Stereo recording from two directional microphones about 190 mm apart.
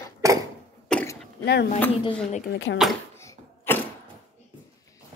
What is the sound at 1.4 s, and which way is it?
Speech, 60° left (ahead or behind).